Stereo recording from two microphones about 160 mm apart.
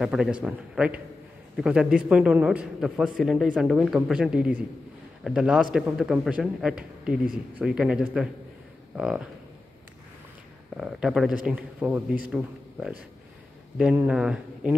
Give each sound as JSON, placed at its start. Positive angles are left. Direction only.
{"t": 0.0, "sound": "a man's voice", "side_deg": -5}
{"t": 10.8, "sound": "a man's voice", "side_deg": -5}